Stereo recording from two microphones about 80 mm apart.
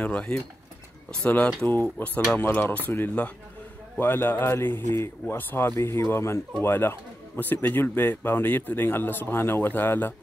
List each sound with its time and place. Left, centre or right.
0.0 s speech: centre